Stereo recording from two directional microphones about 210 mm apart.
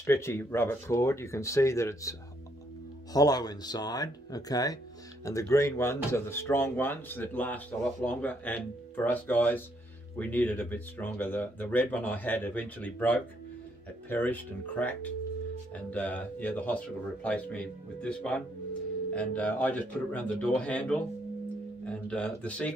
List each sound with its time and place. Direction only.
0.0 s speech: 15° left (ahead or behind)